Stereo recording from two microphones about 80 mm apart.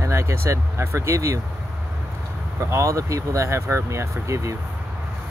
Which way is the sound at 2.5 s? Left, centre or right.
Right.